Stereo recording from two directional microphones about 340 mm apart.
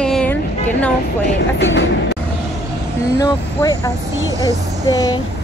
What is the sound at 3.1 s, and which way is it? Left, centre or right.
Speech, centre.